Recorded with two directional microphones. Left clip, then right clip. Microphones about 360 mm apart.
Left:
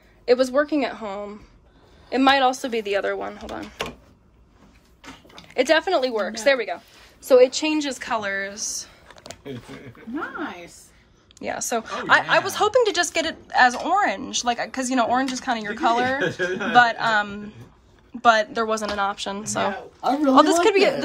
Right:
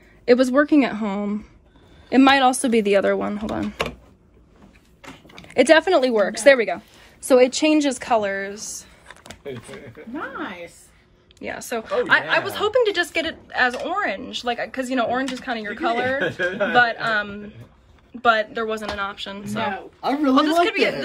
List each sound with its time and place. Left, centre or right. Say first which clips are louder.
0.2 s a woman's voice: right 2 dB; centre
5.3 s speech: right 4 dB; centre
11.3 s a woman's voice: left 2 dB; centre